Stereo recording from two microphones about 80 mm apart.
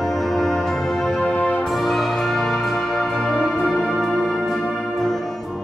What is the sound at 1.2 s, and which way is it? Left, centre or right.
Music, centre.